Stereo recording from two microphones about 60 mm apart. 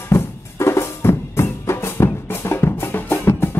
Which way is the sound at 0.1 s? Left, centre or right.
Left.